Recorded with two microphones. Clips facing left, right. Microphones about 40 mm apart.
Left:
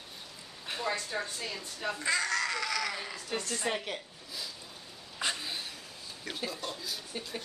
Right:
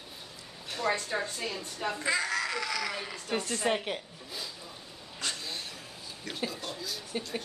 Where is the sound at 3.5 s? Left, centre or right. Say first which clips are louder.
Right 4 dB; centre.